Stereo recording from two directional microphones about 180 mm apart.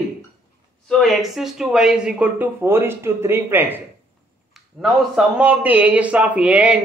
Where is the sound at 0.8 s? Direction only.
Centre (ahead or behind).